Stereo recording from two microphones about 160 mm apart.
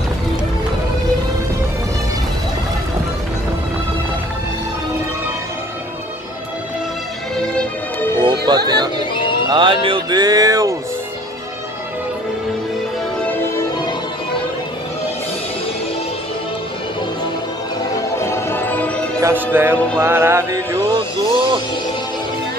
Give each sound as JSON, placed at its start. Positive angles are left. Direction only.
{"t": 8.2, "sound": "music", "side_deg": -30}
{"t": 18.2, "sound": "music", "side_deg": 15}
{"t": 19.2, "sound": "music", "side_deg": -10}
{"t": 21.3, "sound": "music", "side_deg": -30}